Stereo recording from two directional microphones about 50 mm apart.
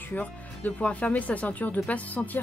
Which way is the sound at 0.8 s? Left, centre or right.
Left.